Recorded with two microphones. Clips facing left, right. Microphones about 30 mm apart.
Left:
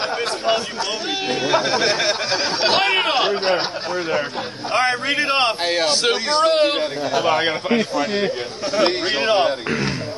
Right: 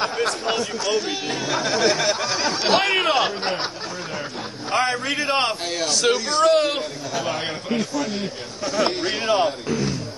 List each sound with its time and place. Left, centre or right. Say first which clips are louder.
0.0 s speech: left 1 dB; centre
1.3 s speech: left 5 dB; left
4.7 s a man's voice: left 3 dB; left
7.2 s a man's voice: left 7 dB; left